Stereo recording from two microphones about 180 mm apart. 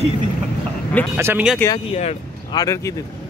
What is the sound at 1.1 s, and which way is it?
Speech, 10° right (ahead or behind).